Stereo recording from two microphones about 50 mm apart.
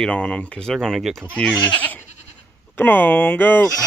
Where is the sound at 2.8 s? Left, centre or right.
Left.